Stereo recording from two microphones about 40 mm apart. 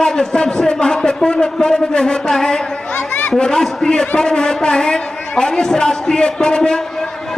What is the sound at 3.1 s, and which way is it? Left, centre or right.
A man's voice, left.